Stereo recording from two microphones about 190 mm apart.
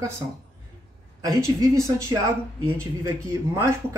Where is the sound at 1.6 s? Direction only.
15° right (ahead or behind).